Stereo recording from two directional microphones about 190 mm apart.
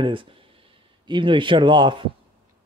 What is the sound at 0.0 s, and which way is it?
Speech, 25° right (ahead or behind).